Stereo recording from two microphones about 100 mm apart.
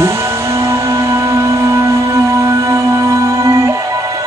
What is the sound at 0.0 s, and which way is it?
Music, 25° right (ahead or behind).